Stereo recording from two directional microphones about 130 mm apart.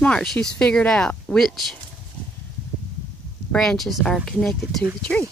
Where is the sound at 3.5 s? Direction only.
5° left (ahead or behind).